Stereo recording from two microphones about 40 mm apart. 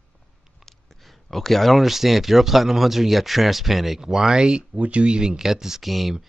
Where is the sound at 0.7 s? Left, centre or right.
Centre.